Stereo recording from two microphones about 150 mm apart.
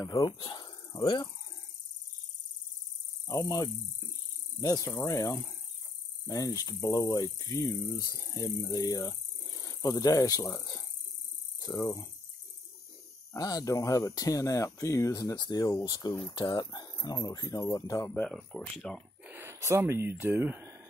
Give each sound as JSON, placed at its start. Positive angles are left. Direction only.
{"t": 0.0, "sound": "speech", "side_deg": 25}
{"t": 3.3, "sound": "speech", "side_deg": 25}
{"t": 13.3, "sound": "speech", "side_deg": 25}
{"t": 19.2, "sound": "speech", "side_deg": -15}